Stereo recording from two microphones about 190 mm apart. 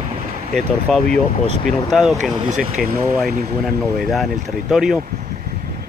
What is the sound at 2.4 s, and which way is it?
Speech, 45° right (ahead or behind).